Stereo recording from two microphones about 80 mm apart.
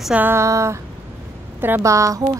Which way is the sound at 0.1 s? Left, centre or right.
Right.